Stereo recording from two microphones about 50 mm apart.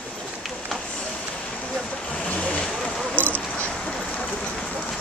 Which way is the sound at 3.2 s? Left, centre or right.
Right.